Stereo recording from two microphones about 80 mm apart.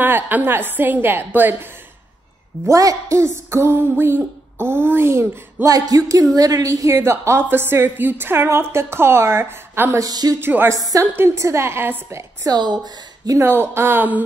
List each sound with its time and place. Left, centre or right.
0.0 s a woman's voice: right
2.7 s a sound: right
5.7 s speech: right
7.0 s a sound: right
9.9 s speech: right
10.4 s a woman's voice: right
10.7 s speech: right
11.1 s a sound: right
12.4 s a woman's voice: right
13.4 s a woman's voice: right